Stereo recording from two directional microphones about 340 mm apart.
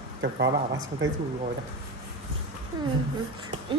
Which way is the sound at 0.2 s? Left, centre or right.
Right.